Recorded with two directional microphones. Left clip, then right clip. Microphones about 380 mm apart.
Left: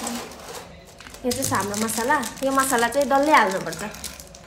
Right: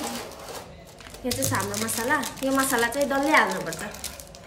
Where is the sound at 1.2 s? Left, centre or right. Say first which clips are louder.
Left 4 dB; centre.